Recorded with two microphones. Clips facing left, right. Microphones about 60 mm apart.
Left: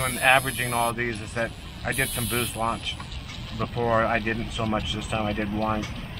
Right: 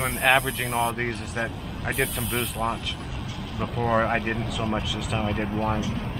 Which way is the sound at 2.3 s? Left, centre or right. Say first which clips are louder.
Even; centre.